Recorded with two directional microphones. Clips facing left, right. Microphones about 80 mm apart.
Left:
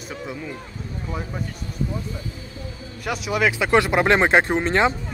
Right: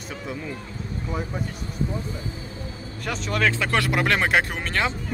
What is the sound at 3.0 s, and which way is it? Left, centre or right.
Speech, centre.